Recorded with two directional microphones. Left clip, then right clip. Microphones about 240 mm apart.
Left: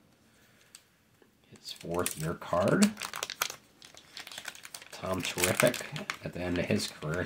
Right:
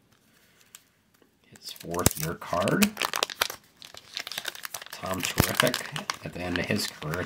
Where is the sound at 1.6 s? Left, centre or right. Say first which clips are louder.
Right 5 dB; centre.